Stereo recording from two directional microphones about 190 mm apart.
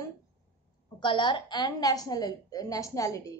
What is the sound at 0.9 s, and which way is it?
A woman's voice, 25° left (ahead or behind).